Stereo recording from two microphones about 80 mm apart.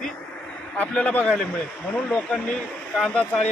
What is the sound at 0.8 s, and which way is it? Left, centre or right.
A man's voice, centre.